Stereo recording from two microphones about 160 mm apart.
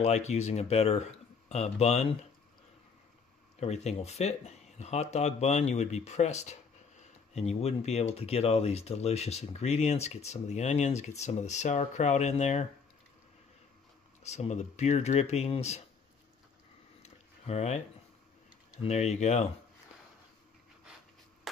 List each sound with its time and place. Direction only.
0.0 s speech: 45° left (ahead or behind)
3.5 s speech: 45° left (ahead or behind)
14.2 s speech: 45° left (ahead or behind)
17.0 s a sound: 45° left (ahead or behind)
18.8 s speech: 45° left (ahead or behind)